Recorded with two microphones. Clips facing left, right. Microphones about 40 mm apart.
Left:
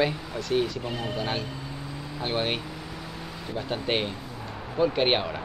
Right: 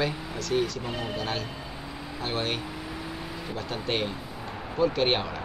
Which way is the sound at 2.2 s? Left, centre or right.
Centre.